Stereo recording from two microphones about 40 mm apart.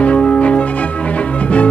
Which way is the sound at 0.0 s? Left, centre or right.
Left.